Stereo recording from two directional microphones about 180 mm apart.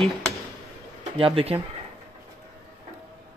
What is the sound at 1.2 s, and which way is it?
Speech, 30° right (ahead or behind).